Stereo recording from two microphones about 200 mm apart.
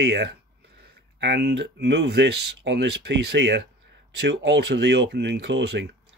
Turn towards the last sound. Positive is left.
turn(degrees=-60)  # may be behind; listen again after turning